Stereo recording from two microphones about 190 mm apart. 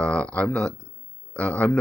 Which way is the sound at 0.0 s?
5° left (ahead or behind).